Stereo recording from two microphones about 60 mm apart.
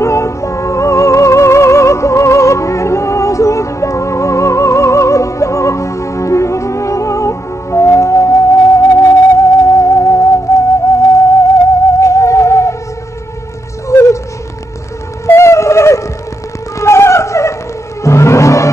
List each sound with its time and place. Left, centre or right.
0.0 s music: left
9.4 s music: left
12.0 s music: left
13.9 s a sound: left
15.2 s a sound: left
18.0 s music: left